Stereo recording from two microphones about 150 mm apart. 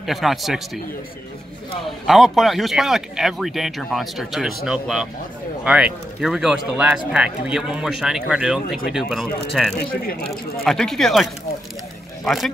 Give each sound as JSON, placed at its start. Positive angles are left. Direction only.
{"t": 0.0, "sound": "speech", "side_deg": 0}
{"t": 2.0, "sound": "speech", "side_deg": 0}
{"t": 9.8, "sound": "speech", "side_deg": 90}
{"t": 10.6, "sound": "speech", "side_deg": 5}